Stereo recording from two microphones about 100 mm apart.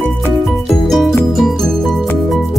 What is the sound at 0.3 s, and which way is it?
Music, centre (ahead or behind).